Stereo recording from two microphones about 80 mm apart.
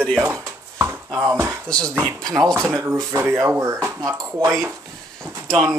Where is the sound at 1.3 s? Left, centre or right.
Right.